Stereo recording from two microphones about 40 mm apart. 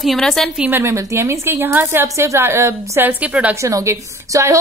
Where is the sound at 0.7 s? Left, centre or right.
Right.